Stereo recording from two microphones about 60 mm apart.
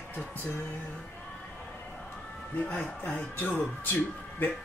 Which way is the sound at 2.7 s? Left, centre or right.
Left.